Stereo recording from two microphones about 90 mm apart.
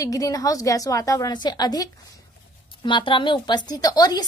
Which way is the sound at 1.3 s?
50° left (ahead or behind).